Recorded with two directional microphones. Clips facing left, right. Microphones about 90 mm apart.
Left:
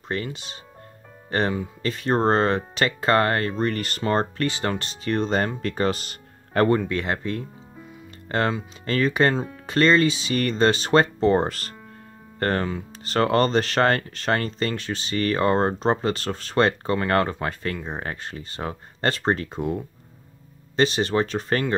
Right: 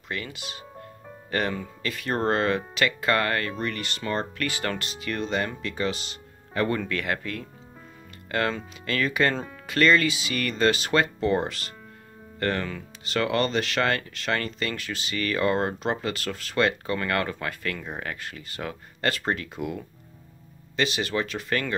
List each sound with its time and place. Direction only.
0.1 s speech: 30° left (ahead or behind)
4.5 s speech: 25° left (ahead or behind); by 6.7 s 50° left (ahead or behind)
6.8 s speech: 25° left (ahead or behind)